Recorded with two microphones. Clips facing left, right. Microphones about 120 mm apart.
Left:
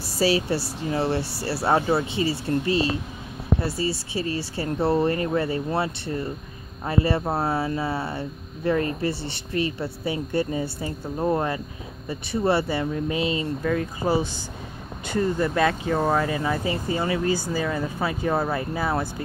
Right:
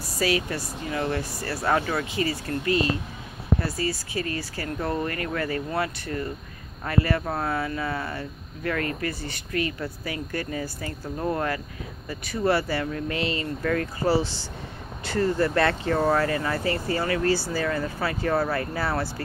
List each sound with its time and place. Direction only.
0.0 s speech: 30° left (ahead or behind)